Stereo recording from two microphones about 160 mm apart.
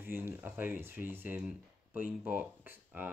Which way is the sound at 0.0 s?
15° right (ahead or behind).